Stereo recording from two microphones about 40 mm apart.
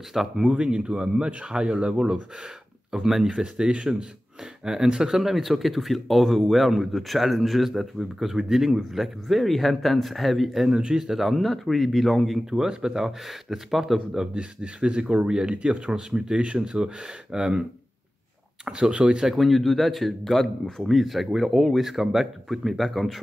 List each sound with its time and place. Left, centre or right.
0.4 s speech: right
2.9 s speech: centre
10.7 s speech: centre
12.4 s speech: centre
14.2 s speech: right
18.7 s speech: centre
19.3 s speech: centre